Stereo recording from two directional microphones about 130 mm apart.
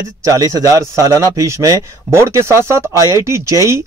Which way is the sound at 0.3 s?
25° right (ahead or behind).